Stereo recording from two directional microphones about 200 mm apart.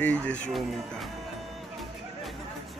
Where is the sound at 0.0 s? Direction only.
5° left (ahead or behind).